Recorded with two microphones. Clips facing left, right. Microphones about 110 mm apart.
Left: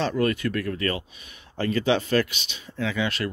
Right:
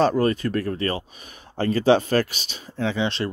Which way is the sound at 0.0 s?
35° right (ahead or behind).